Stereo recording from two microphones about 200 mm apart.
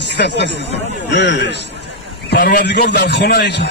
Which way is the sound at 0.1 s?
60° left (ahead or behind).